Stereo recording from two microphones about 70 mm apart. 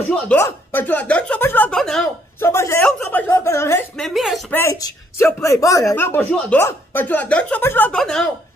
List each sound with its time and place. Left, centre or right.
0.3 s speech: centre
1.4 s speech: left
1.7 s a woman's voice: centre
2.4 s speech: left
3.1 s speech: left
3.4 s speech: left
4.0 s speech: centre
4.5 s speech: left
5.2 s a man's voice: left
5.9 s speech: left
7.6 s speech: left
7.9 s a woman's voice: centre